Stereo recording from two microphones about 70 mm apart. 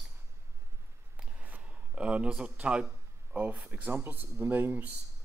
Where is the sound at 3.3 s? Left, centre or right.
Right.